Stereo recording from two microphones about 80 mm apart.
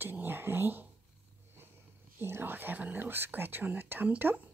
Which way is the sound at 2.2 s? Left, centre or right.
Right.